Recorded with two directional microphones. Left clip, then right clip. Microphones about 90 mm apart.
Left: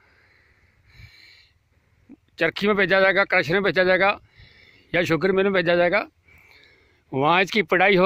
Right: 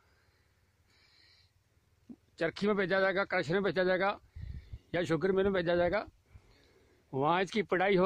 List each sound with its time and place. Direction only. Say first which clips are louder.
0.0 s a sound: left 13 dB; 45° left (ahead or behind)
0.8 s snort: left 15 dB; 45° left (ahead or behind)
2.3 s speech: left 11 dB; 45° left (ahead or behind)